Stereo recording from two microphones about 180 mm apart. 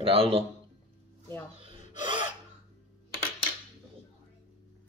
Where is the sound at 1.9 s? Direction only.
25° right (ahead or behind).